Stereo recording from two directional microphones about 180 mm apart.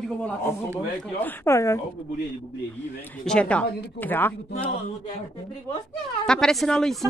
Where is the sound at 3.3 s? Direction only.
5° left (ahead or behind).